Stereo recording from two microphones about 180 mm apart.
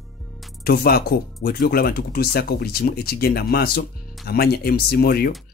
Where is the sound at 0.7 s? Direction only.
60° left (ahead or behind).